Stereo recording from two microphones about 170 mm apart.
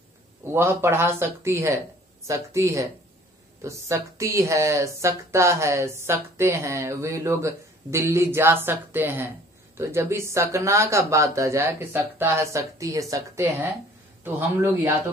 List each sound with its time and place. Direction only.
0.4 s speech: 15° right (ahead or behind)